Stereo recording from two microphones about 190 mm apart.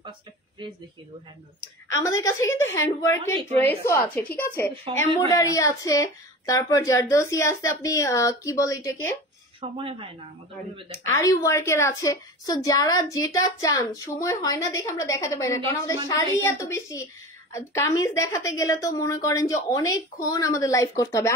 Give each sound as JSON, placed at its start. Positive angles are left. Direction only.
{"t": 2.2, "sound": "a woman's voice", "side_deg": 15}
{"t": 3.3, "sound": "a woman's voice", "side_deg": -30}
{"t": 3.6, "sound": "a woman's voice", "side_deg": 15}
{"t": 4.9, "sound": "speech", "side_deg": -30}
{"t": 5.3, "sound": "a woman's voice", "side_deg": 15}
{"t": 9.6, "sound": "speech", "side_deg": -30}
{"t": 10.9, "sound": "a woman's voice", "side_deg": 15}